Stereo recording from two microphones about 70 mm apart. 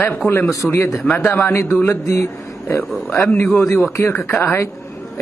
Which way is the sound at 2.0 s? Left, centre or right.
Left.